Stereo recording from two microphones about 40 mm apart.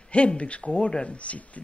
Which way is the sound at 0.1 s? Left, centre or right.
Left.